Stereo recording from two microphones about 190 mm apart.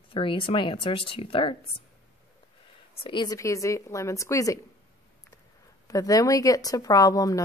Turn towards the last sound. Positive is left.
turn(degrees=20)  # may be behind; listen again after turning